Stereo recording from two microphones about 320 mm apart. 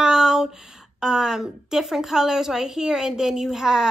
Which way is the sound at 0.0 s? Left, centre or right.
Centre.